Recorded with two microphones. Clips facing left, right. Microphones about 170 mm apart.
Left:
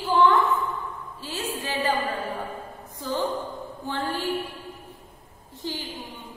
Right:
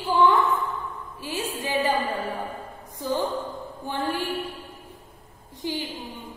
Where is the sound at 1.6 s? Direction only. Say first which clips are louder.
Right 5 dB; 15° right (ahead or behind).